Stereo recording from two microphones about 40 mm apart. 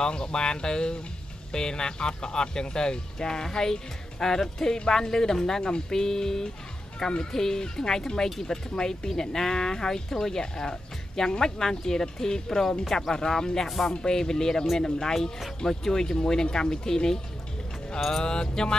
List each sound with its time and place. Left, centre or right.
0.0 s speech: left
18.2 s speech: centre